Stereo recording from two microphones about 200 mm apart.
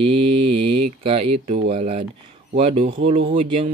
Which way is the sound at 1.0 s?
30° right (ahead or behind).